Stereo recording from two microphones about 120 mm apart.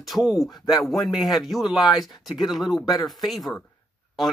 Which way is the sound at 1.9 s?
35° left (ahead or behind).